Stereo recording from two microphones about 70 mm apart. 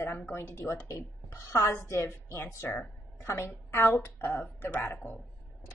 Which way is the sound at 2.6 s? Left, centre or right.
Left.